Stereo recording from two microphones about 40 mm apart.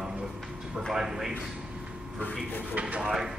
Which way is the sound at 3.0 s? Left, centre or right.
Centre.